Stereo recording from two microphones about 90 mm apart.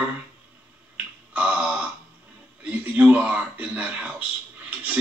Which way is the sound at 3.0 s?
15° right (ahead or behind).